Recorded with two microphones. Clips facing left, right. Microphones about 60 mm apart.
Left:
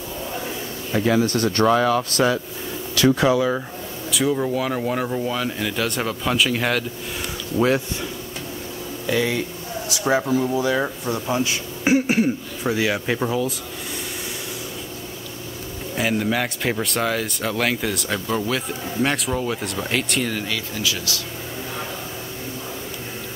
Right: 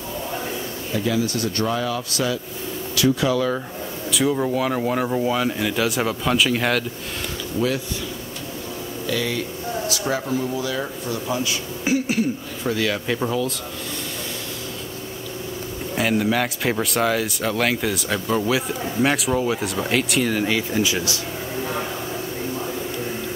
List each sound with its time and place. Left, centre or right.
0.9 s speech: left
1.7 s speech: left
3.3 s speech: centre
4.1 s speech: centre
7.5 s speech: left
9.0 s speech: left
12.6 s speech: centre
16.0 s speech: centre
20.4 s speech: right